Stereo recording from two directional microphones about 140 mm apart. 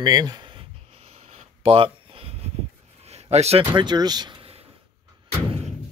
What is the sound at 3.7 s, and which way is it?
Speech, 30° right (ahead or behind).